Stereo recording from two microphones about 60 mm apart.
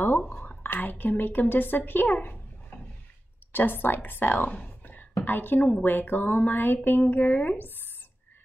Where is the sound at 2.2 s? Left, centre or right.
Left.